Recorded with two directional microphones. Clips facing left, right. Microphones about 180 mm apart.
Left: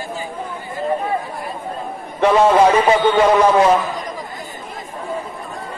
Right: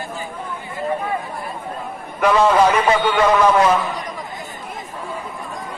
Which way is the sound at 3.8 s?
Centre (ahead or behind).